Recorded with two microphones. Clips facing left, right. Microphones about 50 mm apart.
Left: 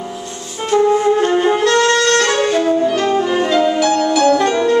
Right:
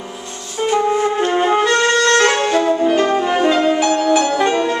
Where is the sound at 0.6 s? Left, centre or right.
Centre.